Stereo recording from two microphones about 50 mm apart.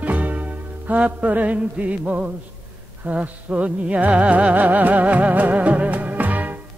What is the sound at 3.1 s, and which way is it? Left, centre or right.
Music, right.